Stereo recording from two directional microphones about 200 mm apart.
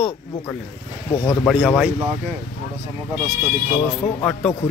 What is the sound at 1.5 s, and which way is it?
Speech, 5° right (ahead or behind).